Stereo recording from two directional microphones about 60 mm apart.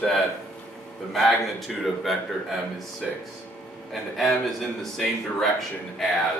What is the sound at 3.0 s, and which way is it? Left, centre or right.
Speech, centre.